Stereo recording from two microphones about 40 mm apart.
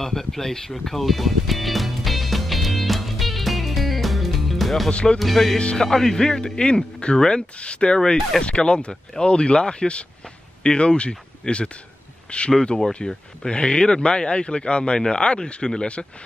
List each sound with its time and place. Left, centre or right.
0.0 s music: centre
5.2 s speech: centre
5.6 s a man's voice: left
5.9 s speech: centre
7.5 s a man's voice: left
13.0 s a man's voice: centre